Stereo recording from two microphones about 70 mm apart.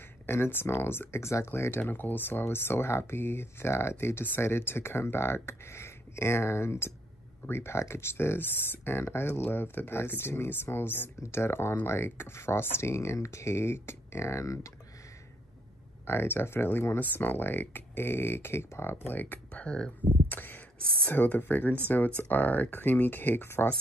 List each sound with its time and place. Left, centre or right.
0.3 s speech: left
16.1 s speech: left; by 19.9 s centre
20.2 s a sound: left
21.1 s speech: left